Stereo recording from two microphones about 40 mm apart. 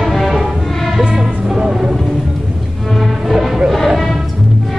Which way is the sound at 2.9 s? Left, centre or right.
Centre.